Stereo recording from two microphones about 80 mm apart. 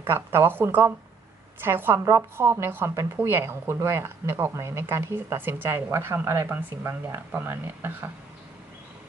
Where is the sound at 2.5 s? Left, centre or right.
Right.